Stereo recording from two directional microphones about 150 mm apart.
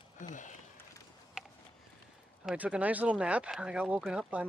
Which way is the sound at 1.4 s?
5° right (ahead or behind).